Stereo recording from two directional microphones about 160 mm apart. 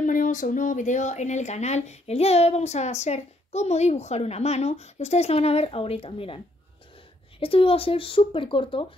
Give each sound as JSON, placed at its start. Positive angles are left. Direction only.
{"t": 0.0, "sound": "speech", "side_deg": 55}